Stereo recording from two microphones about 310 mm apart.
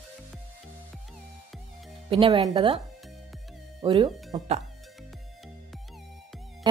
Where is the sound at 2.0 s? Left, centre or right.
Centre.